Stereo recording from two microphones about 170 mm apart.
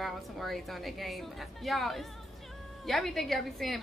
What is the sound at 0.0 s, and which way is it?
A woman's voice, centre (ahead or behind).